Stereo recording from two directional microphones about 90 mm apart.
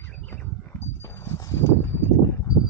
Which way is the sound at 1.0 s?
30° left (ahead or behind).